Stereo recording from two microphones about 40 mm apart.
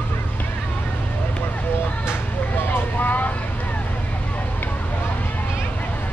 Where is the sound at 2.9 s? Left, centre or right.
Left.